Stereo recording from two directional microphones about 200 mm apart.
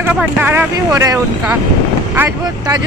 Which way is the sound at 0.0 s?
5° right (ahead or behind).